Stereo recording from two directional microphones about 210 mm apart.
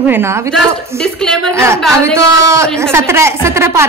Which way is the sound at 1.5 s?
15° right (ahead or behind).